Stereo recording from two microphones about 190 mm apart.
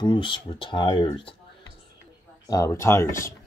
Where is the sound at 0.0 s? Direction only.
25° left (ahead or behind).